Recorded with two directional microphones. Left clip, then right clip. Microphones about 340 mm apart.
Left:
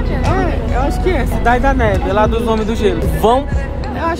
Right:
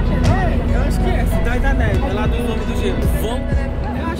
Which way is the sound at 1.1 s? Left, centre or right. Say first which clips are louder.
Left 11 dB; centre.